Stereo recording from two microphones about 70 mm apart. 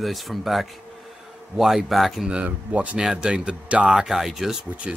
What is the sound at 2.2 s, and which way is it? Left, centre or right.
Speech, centre.